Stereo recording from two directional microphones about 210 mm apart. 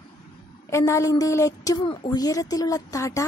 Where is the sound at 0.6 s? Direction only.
15° left (ahead or behind).